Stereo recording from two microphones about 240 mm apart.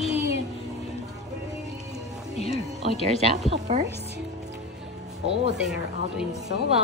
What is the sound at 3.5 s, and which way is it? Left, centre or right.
Speech, right.